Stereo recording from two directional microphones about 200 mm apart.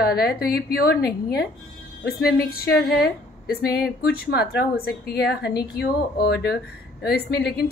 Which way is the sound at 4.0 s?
50° left (ahead or behind).